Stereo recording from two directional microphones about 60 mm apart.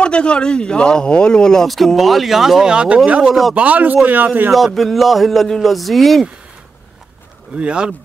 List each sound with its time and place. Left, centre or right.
0.0 s speech: centre
1.7 s a man's voice: centre
2.7 s speech: centre
4.5 s a man's voice: centre
7.5 s speech: centre